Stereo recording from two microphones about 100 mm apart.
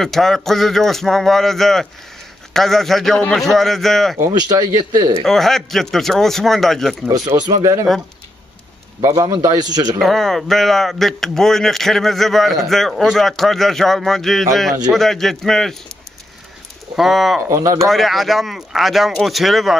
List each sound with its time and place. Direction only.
0.0 s speech: 5° left (ahead or behind)
4.3 s a man's voice: 40° right (ahead or behind)
5.2 s speech: 5° left (ahead or behind)
7.3 s a man's voice: 40° right (ahead or behind)
9.0 s a man's voice: 40° right (ahead or behind)
9.9 s speech: centre (ahead or behind)
16.9 s speech: centre (ahead or behind)